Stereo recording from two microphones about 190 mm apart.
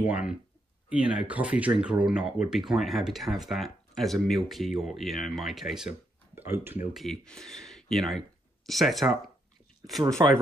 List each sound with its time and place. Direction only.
0.1 s speech: 5° right (ahead or behind)
10.2 s speech: 20° right (ahead or behind)